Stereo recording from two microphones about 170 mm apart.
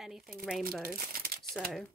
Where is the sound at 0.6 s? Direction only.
60° right (ahead or behind).